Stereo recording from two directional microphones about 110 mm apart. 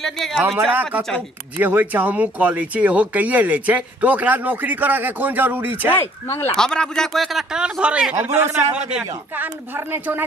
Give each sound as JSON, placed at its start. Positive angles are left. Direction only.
{"t": 0.0, "sound": "speech", "side_deg": 5}
{"t": 0.6, "sound": "speech", "side_deg": -15}
{"t": 5.9, "sound": "speech", "side_deg": 20}
{"t": 6.5, "sound": "speech", "side_deg": 5}
{"t": 8.2, "sound": "a man's voice", "side_deg": -25}
{"t": 8.7, "sound": "speech", "side_deg": -10}